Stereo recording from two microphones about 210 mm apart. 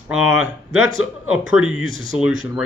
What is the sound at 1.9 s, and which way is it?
Speech, 25° left (ahead or behind).